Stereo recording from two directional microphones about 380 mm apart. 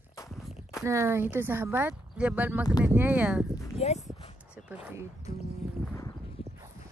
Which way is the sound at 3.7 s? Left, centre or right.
Centre.